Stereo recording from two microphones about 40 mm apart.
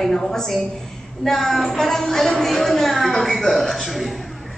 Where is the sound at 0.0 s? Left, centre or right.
Centre.